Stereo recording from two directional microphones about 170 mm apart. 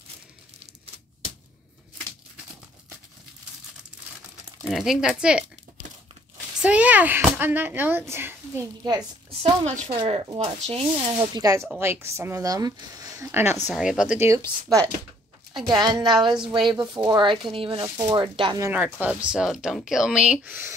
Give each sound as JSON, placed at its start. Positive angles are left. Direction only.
{"t": 4.6, "sound": "speech", "side_deg": 0}
{"t": 6.6, "sound": "a woman's voice", "side_deg": -5}
{"t": 9.4, "sound": "speech", "side_deg": -35}
{"t": 13.7, "sound": "speech", "side_deg": -5}
{"t": 15.7, "sound": "speech", "side_deg": -25}
{"t": 18.6, "sound": "speech", "side_deg": -10}